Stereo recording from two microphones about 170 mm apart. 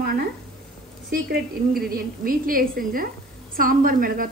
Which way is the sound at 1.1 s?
60° right (ahead or behind).